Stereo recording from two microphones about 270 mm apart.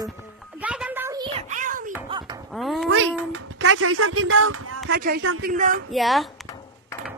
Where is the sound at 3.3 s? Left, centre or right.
Right.